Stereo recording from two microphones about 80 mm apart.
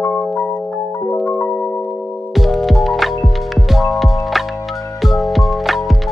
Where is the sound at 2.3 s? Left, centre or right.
Centre.